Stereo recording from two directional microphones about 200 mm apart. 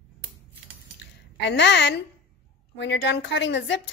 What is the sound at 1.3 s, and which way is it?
A woman's voice, 60° left (ahead or behind).